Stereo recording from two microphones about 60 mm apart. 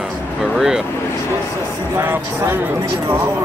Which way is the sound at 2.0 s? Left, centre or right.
Right.